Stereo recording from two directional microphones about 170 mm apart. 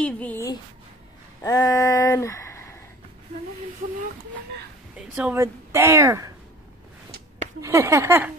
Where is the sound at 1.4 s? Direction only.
20° left (ahead or behind).